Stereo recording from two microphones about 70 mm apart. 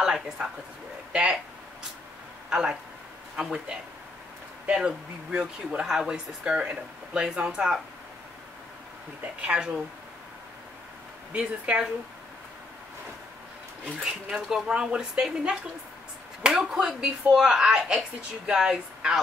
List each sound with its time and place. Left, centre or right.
0.0 s speech: centre
2.5 s speech: centre
9.4 s speech: centre
11.3 s speech: centre
14.0 s speech: centre
16.5 s speech: centre